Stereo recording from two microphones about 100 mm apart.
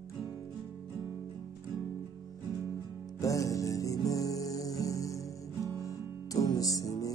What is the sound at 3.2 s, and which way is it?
Music, 35° left (ahead or behind).